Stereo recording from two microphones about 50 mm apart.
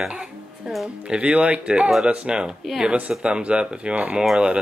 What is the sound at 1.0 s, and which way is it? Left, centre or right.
Speech, right.